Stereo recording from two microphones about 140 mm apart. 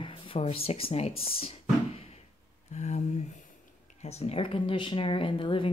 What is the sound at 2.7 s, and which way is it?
Speech, 55° left (ahead or behind).